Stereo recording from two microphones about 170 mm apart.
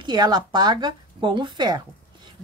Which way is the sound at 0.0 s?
25° right (ahead or behind).